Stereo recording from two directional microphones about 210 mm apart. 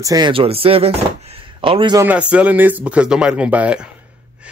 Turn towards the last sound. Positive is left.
turn(degrees=-5)  # may be behind; listen again after turning